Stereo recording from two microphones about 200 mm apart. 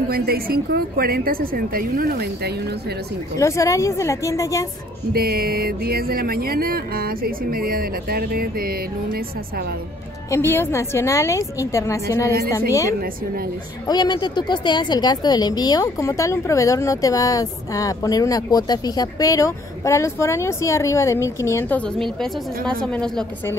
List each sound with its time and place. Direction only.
0.1 s speech: 50° right (ahead or behind)
3.3 s a woman's voice: 15° left (ahead or behind)
5.1 s speech: 50° right (ahead or behind)
10.3 s a woman's voice: 10° left (ahead or behind)